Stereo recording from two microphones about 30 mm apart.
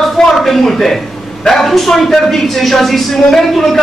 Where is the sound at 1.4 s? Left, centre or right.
Centre.